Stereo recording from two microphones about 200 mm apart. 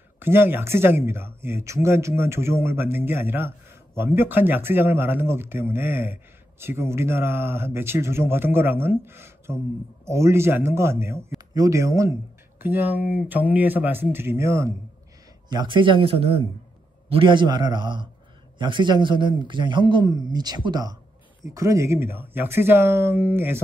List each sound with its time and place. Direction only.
0.2 s a man's voice: 10° right (ahead or behind)